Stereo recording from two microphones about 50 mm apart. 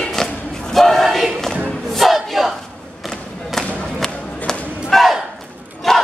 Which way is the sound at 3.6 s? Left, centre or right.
Left.